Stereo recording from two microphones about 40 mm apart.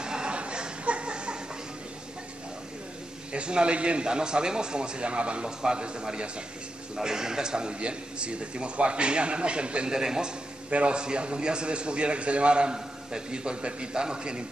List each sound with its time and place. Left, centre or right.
0.0 s chuckle: right
3.3 s a man's voice: right
9.8 s a man's voice: centre
10.7 s a man's voice: right